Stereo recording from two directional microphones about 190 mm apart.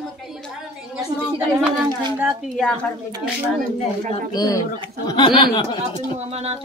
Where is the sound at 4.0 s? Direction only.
40° right (ahead or behind).